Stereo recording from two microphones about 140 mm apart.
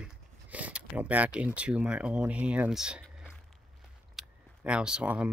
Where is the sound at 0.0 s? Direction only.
10° right (ahead or behind).